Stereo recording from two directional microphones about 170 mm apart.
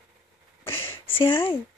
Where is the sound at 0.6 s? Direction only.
15° left (ahead or behind).